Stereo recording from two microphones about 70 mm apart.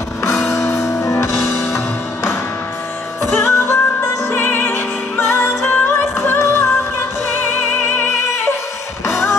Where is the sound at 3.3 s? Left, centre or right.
Left.